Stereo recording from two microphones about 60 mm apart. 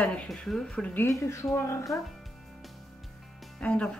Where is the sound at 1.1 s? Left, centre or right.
Left.